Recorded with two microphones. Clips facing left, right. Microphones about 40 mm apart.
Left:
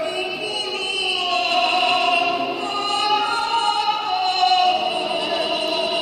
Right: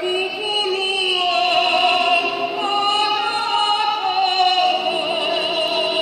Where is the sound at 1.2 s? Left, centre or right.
Centre.